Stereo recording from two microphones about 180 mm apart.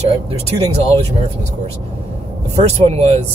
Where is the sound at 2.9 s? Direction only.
35° right (ahead or behind).